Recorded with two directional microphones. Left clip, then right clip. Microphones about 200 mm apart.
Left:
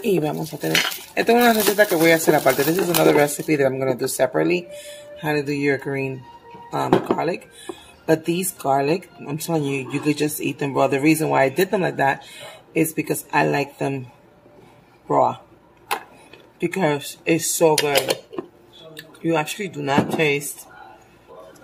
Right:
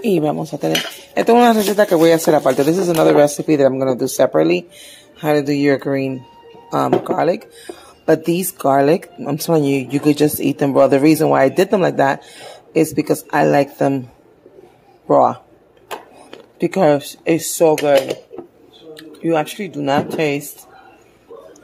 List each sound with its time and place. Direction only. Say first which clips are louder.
0.0 s cutlery: right 4 dB; 45° right (ahead or behind)
5.2 s speech: right 6 dB; 50° right (ahead or behind)
15.0 s speech: right 6 dB; 50° right (ahead or behind)
18.9 s speech: right 4 dB; 40° right (ahead or behind)